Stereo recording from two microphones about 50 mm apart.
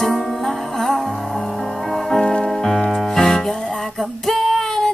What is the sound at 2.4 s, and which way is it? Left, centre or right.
Music, centre.